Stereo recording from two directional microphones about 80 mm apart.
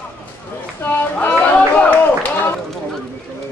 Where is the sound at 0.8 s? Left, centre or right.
Left.